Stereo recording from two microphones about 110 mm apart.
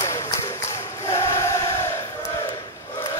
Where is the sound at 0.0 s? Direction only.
25° left (ahead or behind).